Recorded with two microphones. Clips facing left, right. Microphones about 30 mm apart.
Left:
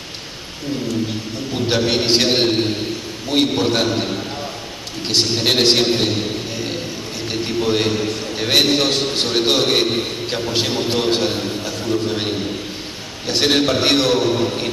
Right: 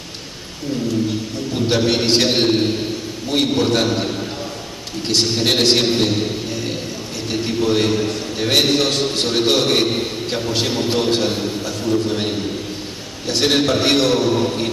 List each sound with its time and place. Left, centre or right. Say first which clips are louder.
1.5 s a man's voice: right 1 dB; centre